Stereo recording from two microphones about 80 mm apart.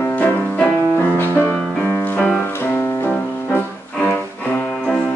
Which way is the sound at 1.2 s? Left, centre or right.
Left.